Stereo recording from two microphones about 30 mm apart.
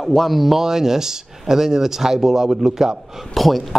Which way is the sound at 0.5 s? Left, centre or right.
Centre.